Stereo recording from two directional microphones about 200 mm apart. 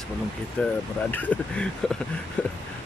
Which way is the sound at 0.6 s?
5° left (ahead or behind).